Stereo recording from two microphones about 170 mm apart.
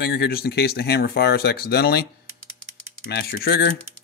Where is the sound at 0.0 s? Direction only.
65° left (ahead or behind).